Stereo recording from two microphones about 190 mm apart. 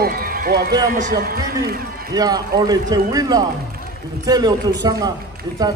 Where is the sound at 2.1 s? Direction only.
20° right (ahead or behind).